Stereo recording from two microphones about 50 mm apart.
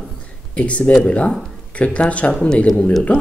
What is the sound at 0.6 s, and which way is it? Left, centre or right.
Speech, left.